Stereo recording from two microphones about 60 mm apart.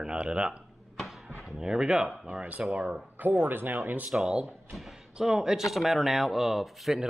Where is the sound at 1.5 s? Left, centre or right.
Centre.